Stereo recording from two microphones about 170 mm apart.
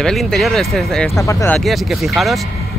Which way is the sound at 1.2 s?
15° left (ahead or behind).